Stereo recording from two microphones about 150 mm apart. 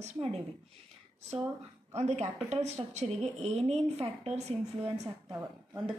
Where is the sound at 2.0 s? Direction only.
50° right (ahead or behind).